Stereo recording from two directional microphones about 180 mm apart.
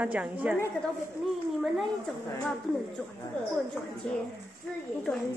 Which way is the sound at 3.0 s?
5° left (ahead or behind).